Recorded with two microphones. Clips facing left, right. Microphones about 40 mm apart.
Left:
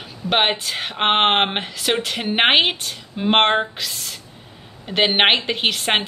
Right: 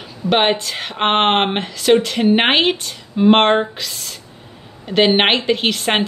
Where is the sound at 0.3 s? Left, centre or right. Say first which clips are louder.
Right 3 dB; centre.